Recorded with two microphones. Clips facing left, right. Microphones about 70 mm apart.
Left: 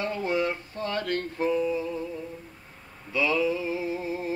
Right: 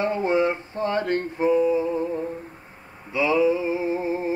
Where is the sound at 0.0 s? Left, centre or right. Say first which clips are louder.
Right 6 dB; right.